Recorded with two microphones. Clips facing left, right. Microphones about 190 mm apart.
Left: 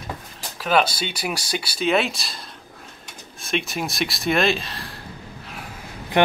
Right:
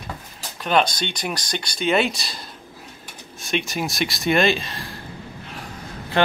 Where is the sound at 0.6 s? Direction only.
5° left (ahead or behind).